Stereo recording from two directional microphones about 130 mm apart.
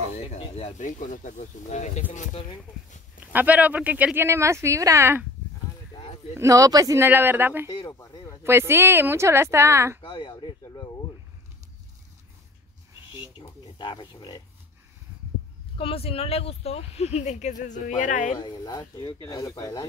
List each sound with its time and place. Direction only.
0.4 s speech: 50° left (ahead or behind)
0.7 s speech: 75° left (ahead or behind)
2.3 s speech: 40° left (ahead or behind)
3.2 s speech: 10° right (ahead or behind)
6.3 s a woman's voice: 25° right (ahead or behind)
7.7 s speech: 35° left (ahead or behind)
8.5 s a woman's voice: 20° right (ahead or behind)
10.0 s speech: 40° left (ahead or behind)
10.6 s a sound: 30° left (ahead or behind)
13.4 s a sound: 35° left (ahead or behind)
15.8 s speech: 50° left (ahead or behind); by 18.4 s 80° left
18.4 s speech: 35° left (ahead or behind)